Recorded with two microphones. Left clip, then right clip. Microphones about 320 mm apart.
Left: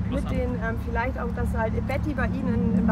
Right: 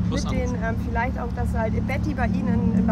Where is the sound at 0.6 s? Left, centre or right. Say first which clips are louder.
Right 2 dB; centre.